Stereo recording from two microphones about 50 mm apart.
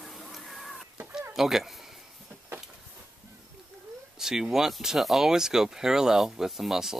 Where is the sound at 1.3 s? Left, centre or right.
Centre.